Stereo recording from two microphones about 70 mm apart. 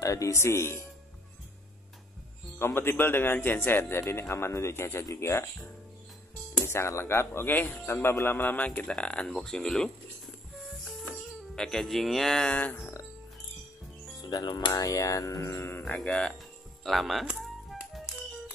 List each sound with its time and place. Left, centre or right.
0.0 s a man's voice: left
2.6 s a man's voice: left
5.0 s music: left
6.6 s a man's voice: left
7.9 s a man's voice: left; by 9.8 s centre
11.5 s speech: centre
12.5 s speech: left
14.3 s speech: left
14.7 s music: left
16.0 s a man's voice: centre
16.8 s speech: centre
17.4 s music: centre